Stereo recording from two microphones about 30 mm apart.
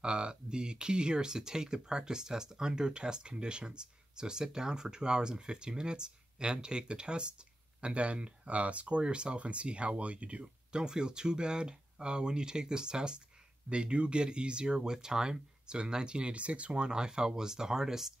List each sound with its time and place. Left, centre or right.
0.0 s speech: right; by 18.1 s centre